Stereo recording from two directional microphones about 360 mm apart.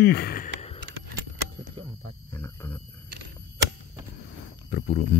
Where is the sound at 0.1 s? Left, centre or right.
Left.